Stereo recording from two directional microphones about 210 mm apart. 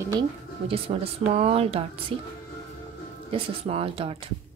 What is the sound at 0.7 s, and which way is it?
Speech, 25° right (ahead or behind).